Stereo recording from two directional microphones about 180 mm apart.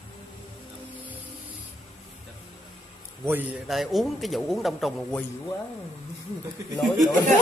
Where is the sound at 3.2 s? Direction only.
10° right (ahead or behind).